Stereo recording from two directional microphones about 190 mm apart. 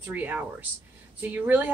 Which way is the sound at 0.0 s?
10° right (ahead or behind).